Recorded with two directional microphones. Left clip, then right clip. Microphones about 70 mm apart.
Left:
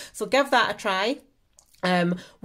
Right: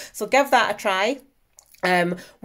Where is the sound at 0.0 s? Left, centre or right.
Left.